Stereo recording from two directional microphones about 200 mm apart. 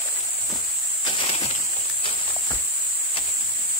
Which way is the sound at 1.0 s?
25° left (ahead or behind).